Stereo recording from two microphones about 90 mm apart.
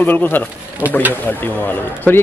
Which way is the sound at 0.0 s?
20° left (ahead or behind).